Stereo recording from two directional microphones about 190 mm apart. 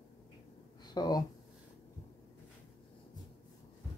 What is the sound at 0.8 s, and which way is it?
Speech, 20° left (ahead or behind).